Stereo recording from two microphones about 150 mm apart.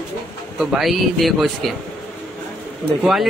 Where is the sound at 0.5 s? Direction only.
Centre (ahead or behind).